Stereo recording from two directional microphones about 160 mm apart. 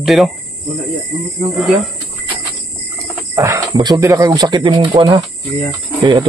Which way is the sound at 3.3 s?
20° right (ahead or behind).